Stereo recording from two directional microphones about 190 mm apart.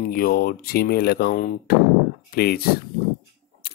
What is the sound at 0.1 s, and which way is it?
Speech, 50° left (ahead or behind).